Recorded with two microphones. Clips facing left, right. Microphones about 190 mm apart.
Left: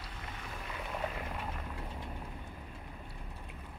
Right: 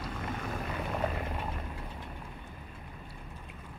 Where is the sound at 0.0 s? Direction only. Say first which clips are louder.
Right 9 dB; 50° right (ahead or behind).